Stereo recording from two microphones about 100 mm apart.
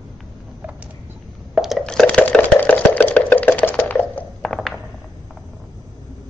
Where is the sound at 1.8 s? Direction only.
10° left (ahead or behind).